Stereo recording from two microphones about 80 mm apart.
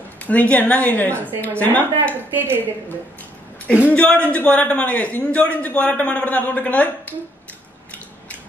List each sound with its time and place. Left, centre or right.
0.3 s a man's voice: centre
2.3 s a woman's voice: right
3.9 s a man's voice: centre